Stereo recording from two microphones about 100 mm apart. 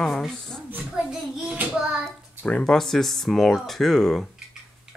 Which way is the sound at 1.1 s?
5° right (ahead or behind).